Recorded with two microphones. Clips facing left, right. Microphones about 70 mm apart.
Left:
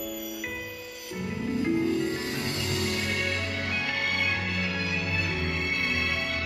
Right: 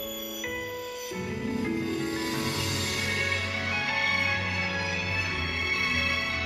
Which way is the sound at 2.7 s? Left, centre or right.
Left.